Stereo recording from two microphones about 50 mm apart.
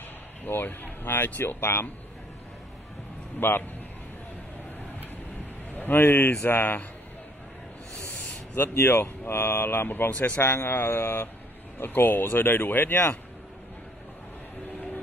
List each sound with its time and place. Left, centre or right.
0.5 s speech: left
3.3 s speech: left
5.8 s speech: left
8.7 s speech: left
9.0 s speech: left
10.1 s speech: left
10.6 s speech: left